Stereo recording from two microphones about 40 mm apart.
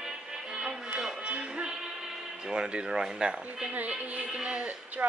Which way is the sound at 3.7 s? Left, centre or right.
Right.